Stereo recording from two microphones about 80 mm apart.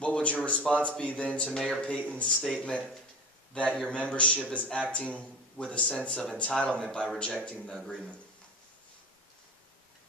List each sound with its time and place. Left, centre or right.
0.0 s speech: centre